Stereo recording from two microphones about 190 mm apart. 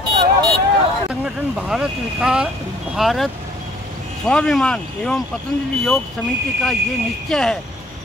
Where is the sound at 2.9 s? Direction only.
Centre (ahead or behind).